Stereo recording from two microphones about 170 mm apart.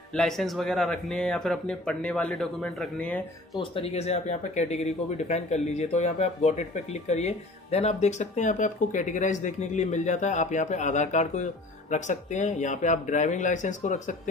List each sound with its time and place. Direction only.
0.1 s speech: centre (ahead or behind)
3.5 s speech: 35° left (ahead or behind)